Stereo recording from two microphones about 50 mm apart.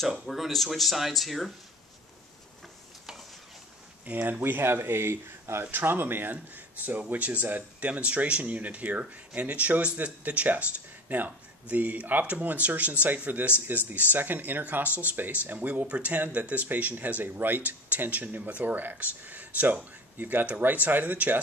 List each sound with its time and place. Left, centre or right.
0.0 s speech: centre
4.0 s speech: right
5.8 s speech: right